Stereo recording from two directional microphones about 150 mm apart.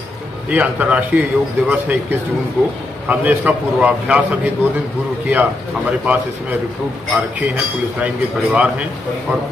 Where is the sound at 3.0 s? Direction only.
10° right (ahead or behind).